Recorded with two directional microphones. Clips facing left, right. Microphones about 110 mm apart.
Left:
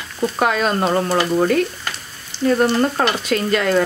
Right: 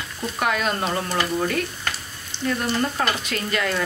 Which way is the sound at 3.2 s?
35° left (ahead or behind).